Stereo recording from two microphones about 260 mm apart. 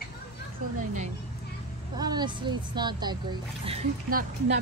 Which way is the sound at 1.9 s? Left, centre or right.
Centre.